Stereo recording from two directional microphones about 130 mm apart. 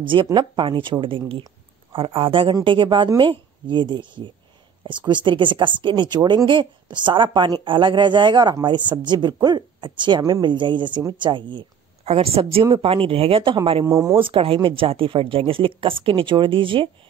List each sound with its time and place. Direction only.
0.0 s a woman's voice: 40° right (ahead or behind)
12.1 s speech: 50° right (ahead or behind)
13.8 s speech: 25° right (ahead or behind)
14.1 s speech: 45° right (ahead or behind)